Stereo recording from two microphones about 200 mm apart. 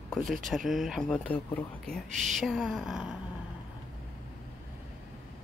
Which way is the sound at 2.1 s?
35° right (ahead or behind).